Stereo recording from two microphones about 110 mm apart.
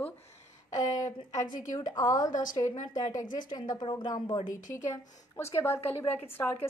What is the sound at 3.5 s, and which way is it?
Speech, 45° left (ahead or behind).